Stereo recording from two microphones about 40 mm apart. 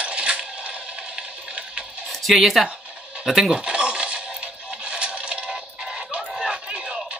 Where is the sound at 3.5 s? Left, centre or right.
Right.